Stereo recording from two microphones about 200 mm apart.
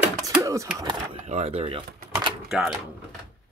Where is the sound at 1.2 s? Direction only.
35° right (ahead or behind).